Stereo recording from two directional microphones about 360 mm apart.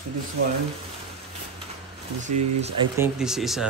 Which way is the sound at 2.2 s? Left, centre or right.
Centre.